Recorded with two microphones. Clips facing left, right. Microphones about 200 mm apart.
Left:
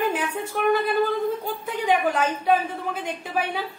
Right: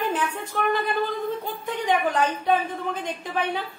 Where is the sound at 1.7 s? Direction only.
10° left (ahead or behind).